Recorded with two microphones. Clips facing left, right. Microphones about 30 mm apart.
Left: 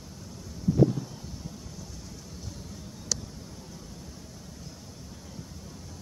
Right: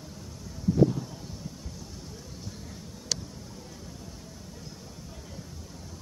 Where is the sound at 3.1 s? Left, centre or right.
Right.